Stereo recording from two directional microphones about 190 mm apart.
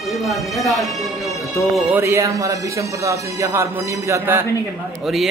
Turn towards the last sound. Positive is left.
turn(degrees=0)  # may be behind; listen again after turning